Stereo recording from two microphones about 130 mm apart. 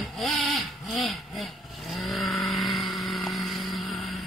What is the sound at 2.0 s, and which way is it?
Vehicle, centre (ahead or behind).